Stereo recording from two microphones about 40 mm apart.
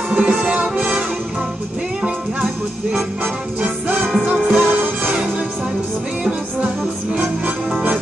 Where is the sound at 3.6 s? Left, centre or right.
Right.